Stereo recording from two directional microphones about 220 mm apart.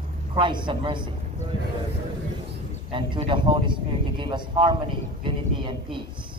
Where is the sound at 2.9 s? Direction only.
25° right (ahead or behind).